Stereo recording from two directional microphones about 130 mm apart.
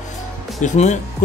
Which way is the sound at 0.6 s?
65° left (ahead or behind).